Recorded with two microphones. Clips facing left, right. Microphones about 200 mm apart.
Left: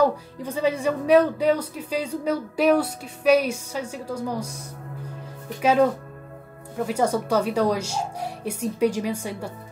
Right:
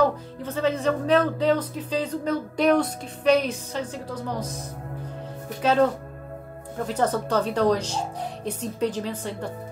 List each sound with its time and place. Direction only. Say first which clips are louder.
0.0 s speech: left 1 dB; 10° left (ahead or behind)
5.6 s speech: left 1 dB; 10° left (ahead or behind)
6.9 s speech: left 1 dB; 10° left (ahead or behind)